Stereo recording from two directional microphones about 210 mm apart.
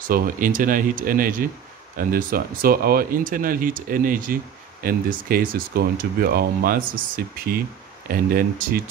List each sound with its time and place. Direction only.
0.1 s speech: 40° right (ahead or behind)